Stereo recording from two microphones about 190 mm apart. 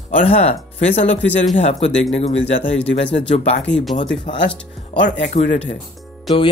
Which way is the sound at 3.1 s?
35° left (ahead or behind).